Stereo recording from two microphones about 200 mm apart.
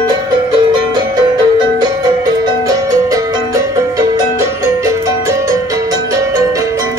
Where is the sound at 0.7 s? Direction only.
25° right (ahead or behind).